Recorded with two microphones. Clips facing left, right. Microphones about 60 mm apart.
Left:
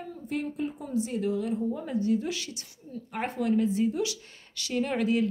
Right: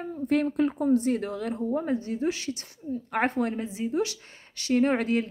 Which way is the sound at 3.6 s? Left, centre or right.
Centre.